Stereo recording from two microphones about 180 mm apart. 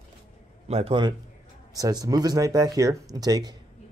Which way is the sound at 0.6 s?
35° right (ahead or behind).